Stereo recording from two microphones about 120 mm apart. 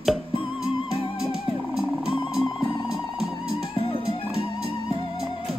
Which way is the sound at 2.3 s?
5° right (ahead or behind).